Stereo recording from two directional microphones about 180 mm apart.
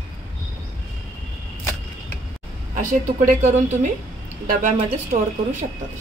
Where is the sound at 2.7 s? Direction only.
45° right (ahead or behind).